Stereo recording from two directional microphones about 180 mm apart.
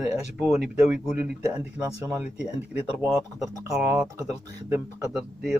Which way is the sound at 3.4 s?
15° right (ahead or behind).